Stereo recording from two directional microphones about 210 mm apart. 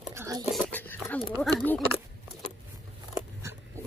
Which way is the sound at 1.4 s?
5° left (ahead or behind).